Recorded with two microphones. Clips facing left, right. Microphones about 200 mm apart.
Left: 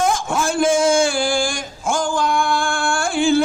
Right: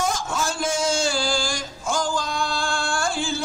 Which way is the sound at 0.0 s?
55° left (ahead or behind).